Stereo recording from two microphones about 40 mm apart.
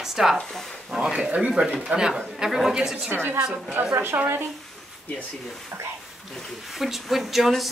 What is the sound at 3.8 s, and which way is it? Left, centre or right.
Speech, right.